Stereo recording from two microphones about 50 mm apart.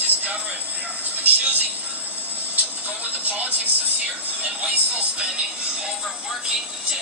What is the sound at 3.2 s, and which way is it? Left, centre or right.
Speech, right.